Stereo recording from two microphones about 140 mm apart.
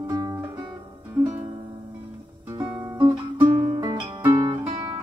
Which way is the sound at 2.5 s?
35° right (ahead or behind).